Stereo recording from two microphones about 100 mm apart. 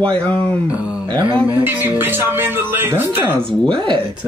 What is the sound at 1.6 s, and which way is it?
Speech, 20° right (ahead or behind).